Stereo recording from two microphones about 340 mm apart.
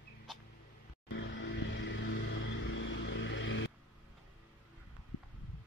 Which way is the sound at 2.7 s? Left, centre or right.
Left.